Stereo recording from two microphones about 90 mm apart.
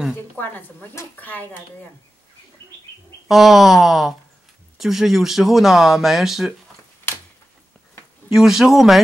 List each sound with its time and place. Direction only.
0.4 s speech: 20° left (ahead or behind)
3.3 s speech: centre (ahead or behind)
8.3 s speech: 5° right (ahead or behind)